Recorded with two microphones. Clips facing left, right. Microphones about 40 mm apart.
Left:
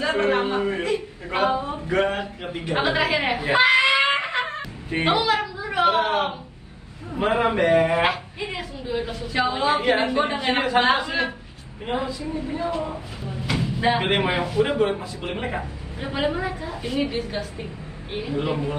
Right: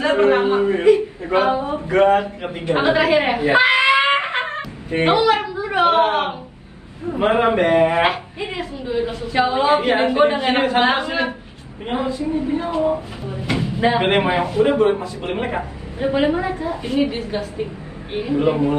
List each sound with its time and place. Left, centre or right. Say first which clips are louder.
0.3 s a woman's voice: right 6 dB; right
0.9 s a sound: right 7 dB; right
2.6 s speech: right 6 dB; right
4.0 s a sound: right 4 dB; right
4.9 s a woman's voice: right 5 dB; right
9.3 s a woman's voice: right 5 dB; centre
9.7 s speech: right 4 dB; right
14.9 s speech: right 7 dB; right
17.0 s a woman's voice: right 3 dB; centre
18.4 s speech: right 9 dB; right